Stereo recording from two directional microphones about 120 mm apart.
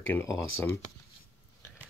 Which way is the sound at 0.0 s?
20° left (ahead or behind).